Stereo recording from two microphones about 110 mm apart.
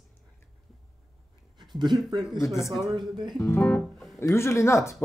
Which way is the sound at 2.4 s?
25° left (ahead or behind).